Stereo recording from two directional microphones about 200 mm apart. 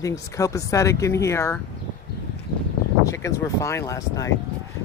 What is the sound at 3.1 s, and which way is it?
Speech, 15° left (ahead or behind).